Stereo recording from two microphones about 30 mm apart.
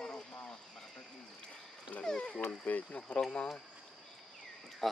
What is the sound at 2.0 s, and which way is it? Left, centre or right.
Speech, left.